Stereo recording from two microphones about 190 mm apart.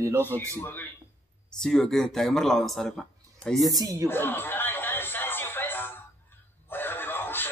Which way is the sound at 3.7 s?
20° right (ahead or behind).